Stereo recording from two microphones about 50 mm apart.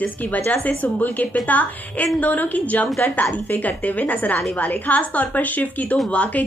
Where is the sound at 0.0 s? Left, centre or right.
Left.